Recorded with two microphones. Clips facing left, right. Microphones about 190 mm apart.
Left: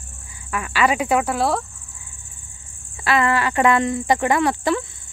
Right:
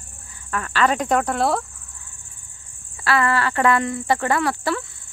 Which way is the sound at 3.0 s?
15° left (ahead or behind).